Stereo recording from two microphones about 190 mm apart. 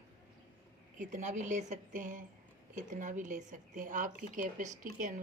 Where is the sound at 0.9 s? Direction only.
40° right (ahead or behind).